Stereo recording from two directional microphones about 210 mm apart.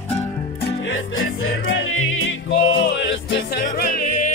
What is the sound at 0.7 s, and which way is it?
Music, 70° left (ahead or behind).